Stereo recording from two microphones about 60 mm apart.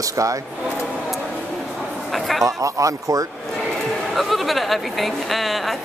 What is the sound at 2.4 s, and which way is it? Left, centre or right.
Speech, right.